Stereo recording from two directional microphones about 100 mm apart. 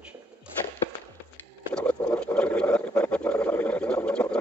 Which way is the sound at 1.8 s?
10° left (ahead or behind).